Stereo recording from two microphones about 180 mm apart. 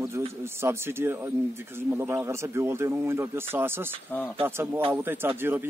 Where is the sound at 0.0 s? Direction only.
15° right (ahead or behind).